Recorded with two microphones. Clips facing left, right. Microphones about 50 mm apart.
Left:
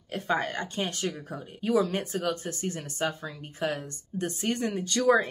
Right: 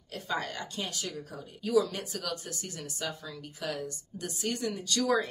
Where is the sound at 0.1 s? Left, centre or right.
Left.